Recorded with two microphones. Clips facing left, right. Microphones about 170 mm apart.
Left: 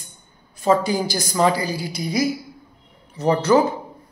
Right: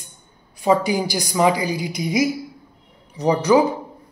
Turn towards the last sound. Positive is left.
turn(degrees=-15)  # may be behind; listen again after turning